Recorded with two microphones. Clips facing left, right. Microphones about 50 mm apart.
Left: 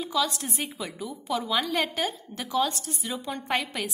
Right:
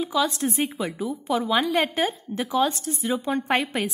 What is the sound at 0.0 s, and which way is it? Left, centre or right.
Speech, centre.